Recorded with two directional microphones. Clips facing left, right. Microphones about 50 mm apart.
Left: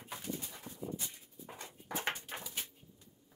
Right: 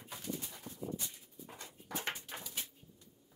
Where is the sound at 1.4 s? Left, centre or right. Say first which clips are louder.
Left 2 dB; left.